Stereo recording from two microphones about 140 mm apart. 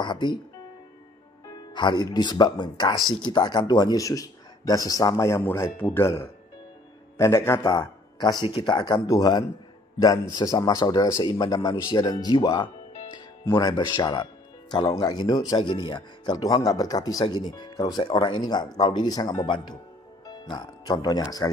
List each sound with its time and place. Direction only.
0.0 s speech: 35° left (ahead or behind)
1.5 s speech: 35° left (ahead or behind)
8.2 s speech: 30° left (ahead or behind)